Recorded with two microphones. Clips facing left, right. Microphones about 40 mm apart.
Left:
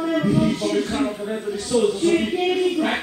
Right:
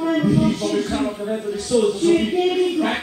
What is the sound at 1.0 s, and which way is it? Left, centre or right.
A man's voice, centre.